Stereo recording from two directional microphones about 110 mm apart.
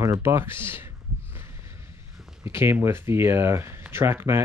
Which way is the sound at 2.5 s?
20° right (ahead or behind).